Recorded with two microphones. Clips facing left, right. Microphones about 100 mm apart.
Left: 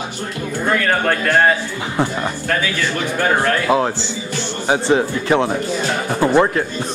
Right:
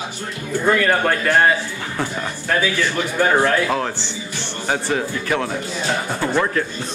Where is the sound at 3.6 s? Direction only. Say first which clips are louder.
Left 5 dB; 15° left (ahead or behind).